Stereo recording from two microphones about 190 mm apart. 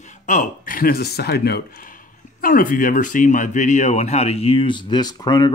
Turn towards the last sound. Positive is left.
turn(degrees=20)  # may be behind; listen again after turning